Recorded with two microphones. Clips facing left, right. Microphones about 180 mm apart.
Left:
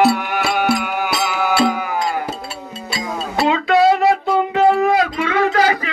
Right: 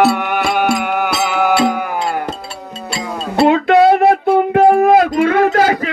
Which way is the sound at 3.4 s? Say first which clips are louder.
Right 5 dB; 55° right (ahead or behind).